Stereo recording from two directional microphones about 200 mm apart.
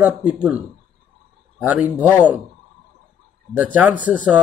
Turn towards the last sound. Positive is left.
turn(degrees=-5)  # may be behind; listen again after turning